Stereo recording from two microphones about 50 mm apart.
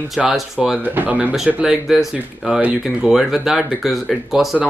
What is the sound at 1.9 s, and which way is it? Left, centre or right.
Speech, centre.